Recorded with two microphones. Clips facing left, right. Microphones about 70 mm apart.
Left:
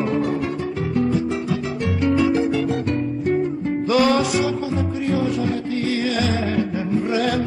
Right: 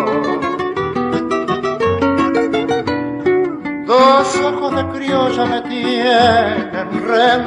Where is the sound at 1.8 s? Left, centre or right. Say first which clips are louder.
Right 4 dB; right.